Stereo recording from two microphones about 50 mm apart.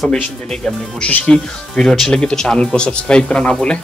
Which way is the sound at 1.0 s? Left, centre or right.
Centre.